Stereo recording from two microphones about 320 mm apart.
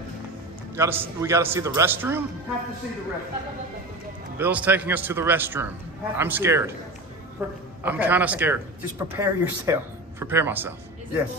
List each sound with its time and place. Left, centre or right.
0.7 s speech: centre
4.4 s a man's voice: centre